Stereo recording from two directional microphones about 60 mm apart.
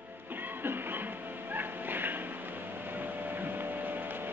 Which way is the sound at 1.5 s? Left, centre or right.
Right.